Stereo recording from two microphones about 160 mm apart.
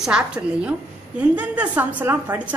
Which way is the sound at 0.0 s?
5° right (ahead or behind).